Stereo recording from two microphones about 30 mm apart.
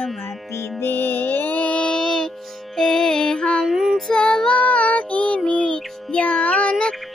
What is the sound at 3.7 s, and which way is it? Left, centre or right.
Child singing, right.